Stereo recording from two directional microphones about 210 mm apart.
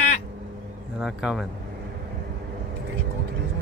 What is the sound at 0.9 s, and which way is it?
Speech, 5° right (ahead or behind).